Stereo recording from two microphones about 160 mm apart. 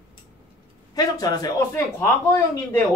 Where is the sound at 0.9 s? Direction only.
25° left (ahead or behind).